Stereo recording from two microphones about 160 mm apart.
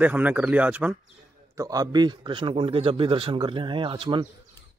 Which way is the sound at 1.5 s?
20° right (ahead or behind).